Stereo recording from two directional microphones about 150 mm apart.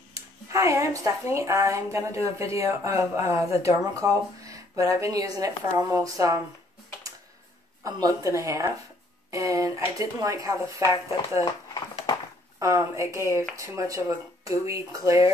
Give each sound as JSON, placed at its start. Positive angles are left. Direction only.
{"t": 0.1, "sound": "speech", "side_deg": -20}
{"t": 7.8, "sound": "speech", "side_deg": -20}
{"t": 10.8, "sound": "speech", "side_deg": 30}
{"t": 12.5, "sound": "speech", "side_deg": -20}